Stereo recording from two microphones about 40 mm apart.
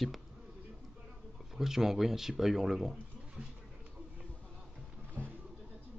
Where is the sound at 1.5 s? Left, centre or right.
Centre.